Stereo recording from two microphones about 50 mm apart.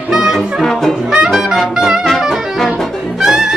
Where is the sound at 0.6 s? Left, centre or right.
Centre.